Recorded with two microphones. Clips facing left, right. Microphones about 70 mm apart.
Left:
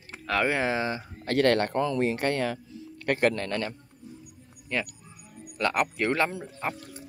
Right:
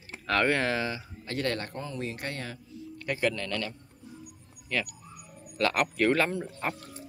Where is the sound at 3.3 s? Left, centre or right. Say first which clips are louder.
Left 3 dB; left.